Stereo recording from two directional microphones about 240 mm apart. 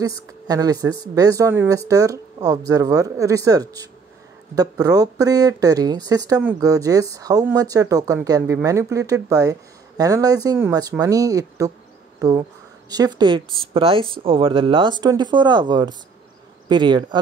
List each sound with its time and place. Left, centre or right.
0.0 s speech: centre